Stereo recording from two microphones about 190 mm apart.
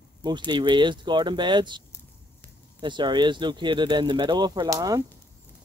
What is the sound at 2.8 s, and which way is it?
Speech, 25° right (ahead or behind).